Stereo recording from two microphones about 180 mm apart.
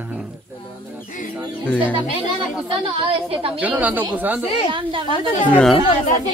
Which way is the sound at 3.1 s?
30° right (ahead or behind).